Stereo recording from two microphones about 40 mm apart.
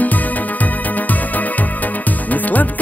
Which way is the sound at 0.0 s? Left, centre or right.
Left.